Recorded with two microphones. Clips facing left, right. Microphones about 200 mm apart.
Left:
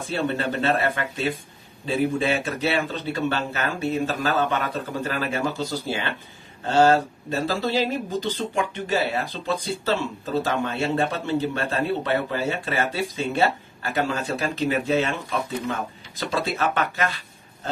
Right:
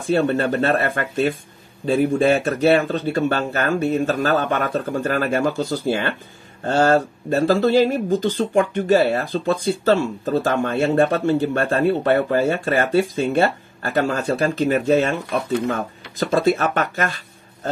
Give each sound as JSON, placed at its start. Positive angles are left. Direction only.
{"t": 0.1, "sound": "speech", "side_deg": -50}
{"t": 16.2, "sound": "speech", "side_deg": -50}